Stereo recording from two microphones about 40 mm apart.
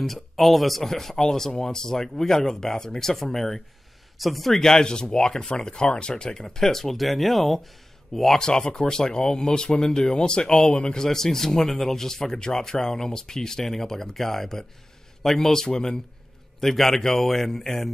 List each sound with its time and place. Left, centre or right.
0.0 s speech: centre
4.6 s speech: centre
8.4 s speech: centre
11.1 s speech: centre
16.5 s speech: centre